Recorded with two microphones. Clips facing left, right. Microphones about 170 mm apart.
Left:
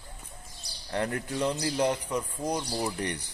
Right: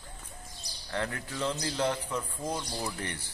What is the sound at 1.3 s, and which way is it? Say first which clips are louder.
A man's voice: left 3 dB; 10° left (ahead or behind).